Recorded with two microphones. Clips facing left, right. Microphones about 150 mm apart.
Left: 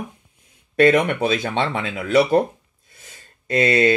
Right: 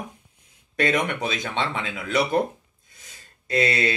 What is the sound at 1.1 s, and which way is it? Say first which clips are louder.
Speech: left 7 dB; 55° left (ahead or behind).